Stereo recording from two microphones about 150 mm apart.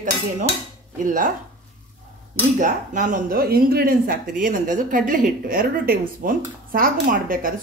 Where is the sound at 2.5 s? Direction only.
60° right (ahead or behind).